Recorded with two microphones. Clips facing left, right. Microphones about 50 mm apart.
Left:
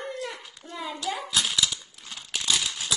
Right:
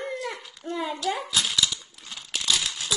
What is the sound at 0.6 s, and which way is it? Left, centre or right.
Speech, right.